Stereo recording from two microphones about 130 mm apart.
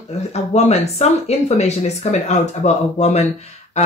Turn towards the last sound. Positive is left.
turn(degrees=60)  # may be behind; listen again after turning